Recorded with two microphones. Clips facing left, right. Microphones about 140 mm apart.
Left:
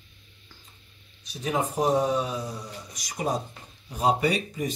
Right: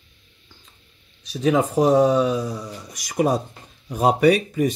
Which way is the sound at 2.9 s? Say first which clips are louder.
Right 8 dB; 75° right (ahead or behind).